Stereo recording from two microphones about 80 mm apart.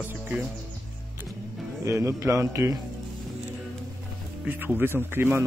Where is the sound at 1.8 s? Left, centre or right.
Right.